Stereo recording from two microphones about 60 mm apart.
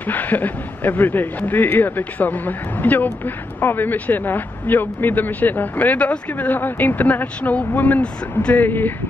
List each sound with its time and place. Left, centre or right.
0.0 s speech: left
8.6 s speech: left